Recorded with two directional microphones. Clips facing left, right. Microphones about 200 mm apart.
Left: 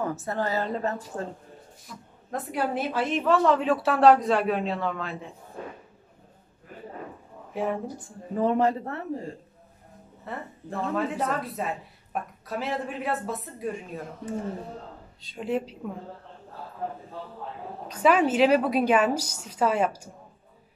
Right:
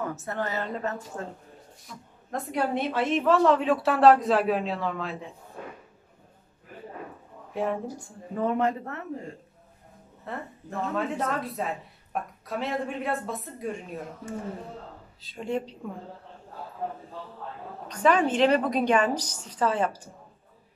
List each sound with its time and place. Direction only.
0.0 s a woman's voice: 35° left (ahead or behind)
2.3 s a woman's voice: 5° left (ahead or behind)
7.5 s a woman's voice: centre (ahead or behind)
8.4 s a woman's voice: 30° left (ahead or behind)
10.3 s a woman's voice: centre (ahead or behind)
15.2 s a woman's voice: centre (ahead or behind)
17.8 s a woman's voice: 5° left (ahead or behind)